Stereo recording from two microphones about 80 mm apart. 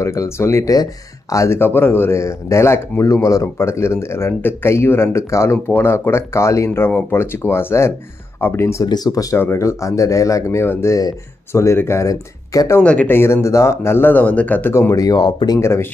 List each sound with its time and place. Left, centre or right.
0.0 s speech: left
1.6 s speech: left
8.8 s speech: left
12.8 s speech: centre
13.1 s speech: left
14.7 s speech: left
15.0 s speech: left
15.6 s speech: left